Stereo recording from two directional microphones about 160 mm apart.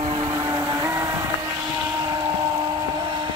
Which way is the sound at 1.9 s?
20° right (ahead or behind).